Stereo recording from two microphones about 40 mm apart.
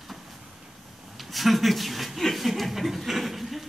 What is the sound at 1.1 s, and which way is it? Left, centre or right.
Speech, centre.